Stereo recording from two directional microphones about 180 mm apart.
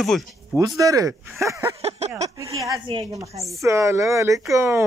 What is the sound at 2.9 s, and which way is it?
A man's voice, 20° right (ahead or behind).